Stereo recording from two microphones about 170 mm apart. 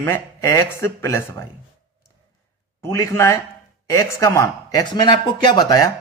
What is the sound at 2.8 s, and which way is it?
Speech, 15° left (ahead or behind).